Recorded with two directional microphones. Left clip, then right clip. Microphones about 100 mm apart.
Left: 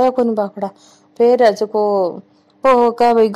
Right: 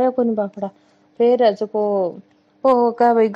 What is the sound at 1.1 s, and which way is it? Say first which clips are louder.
Speech: left 3 dB; 75° left (ahead or behind).